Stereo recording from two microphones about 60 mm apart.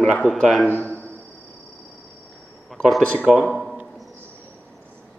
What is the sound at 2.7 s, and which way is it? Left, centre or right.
Speech, centre.